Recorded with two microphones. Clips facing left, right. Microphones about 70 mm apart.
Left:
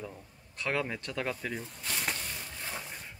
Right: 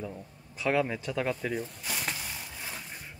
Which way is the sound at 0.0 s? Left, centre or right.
Centre.